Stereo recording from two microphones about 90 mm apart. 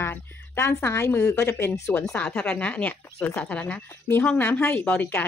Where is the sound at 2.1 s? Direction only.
15° left (ahead or behind).